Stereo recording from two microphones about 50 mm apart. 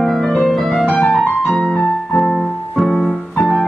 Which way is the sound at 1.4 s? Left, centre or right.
Left.